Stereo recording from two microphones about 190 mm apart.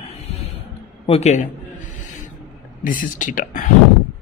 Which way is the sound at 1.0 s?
35° left (ahead or behind).